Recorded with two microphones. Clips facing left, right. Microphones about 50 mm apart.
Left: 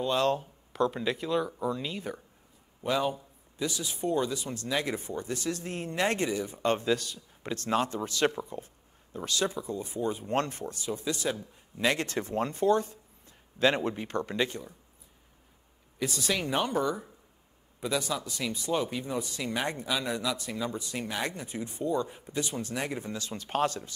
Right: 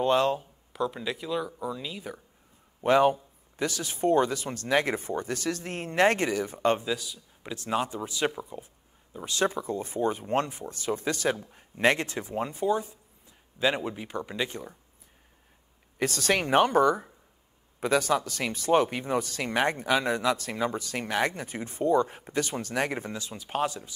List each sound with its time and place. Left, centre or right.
0.0 s speech: right
0.4 s speech: centre
2.8 s speech: right
7.5 s speech: centre
9.3 s speech: right
10.2 s speech: centre
10.7 s speech: right
12.1 s speech: centre
14.5 s speech: right
16.0 s speech: right
20.4 s speech: right
23.2 s speech: centre